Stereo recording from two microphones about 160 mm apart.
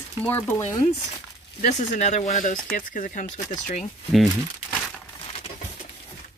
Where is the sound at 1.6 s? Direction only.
50° left (ahead or behind).